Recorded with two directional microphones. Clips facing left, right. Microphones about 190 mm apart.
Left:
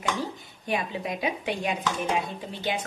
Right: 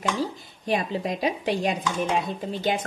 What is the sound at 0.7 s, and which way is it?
Speech, 35° right (ahead or behind).